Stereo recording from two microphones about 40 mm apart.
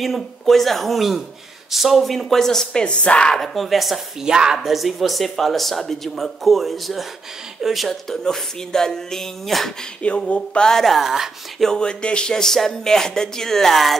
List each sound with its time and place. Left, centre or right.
0.0 s speech: centre
2.7 s speech: left
3.3 s speech: centre
4.2 s speech: centre
4.6 s speech: centre
8.1 s speech: centre
10.0 s speech: left
10.6 s speech: centre
10.9 s speech: centre
11.6 s speech: centre
12.4 s speech: centre